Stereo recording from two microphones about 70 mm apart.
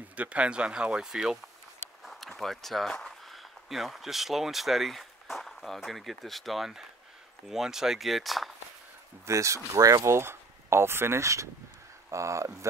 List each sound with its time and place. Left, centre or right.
0.1 s speech: centre
9.2 s speech: right
10.1 s speech: right